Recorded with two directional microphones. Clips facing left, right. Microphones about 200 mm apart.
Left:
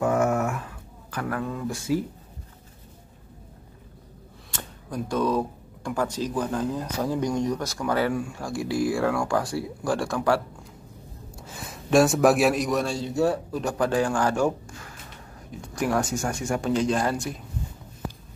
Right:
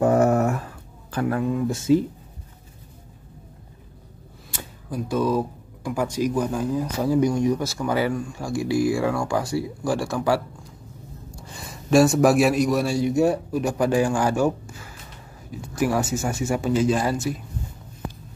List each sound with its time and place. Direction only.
0.0 s a sound: 35° right (ahead or behind)
1.2 s speech: 20° right (ahead or behind)
4.5 s speech: 5° right (ahead or behind)
8.1 s a man's voice: 10° left (ahead or behind)
11.4 s a man's voice: centre (ahead or behind)